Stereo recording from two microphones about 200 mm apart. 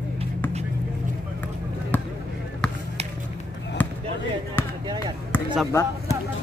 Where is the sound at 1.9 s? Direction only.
10° left (ahead or behind).